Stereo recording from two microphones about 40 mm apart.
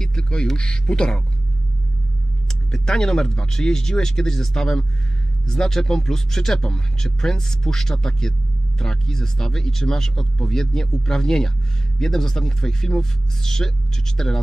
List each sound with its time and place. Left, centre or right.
0.0 s a sound: centre
0.6 s speech: left
2.4 s speech: centre